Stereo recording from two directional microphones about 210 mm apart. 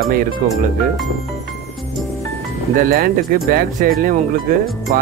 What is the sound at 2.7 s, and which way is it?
Speech, 45° right (ahead or behind).